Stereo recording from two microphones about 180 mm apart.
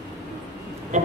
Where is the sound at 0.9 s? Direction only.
40° right (ahead or behind).